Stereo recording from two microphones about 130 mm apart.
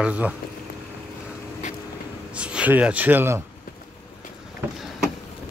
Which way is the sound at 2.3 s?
10° right (ahead or behind).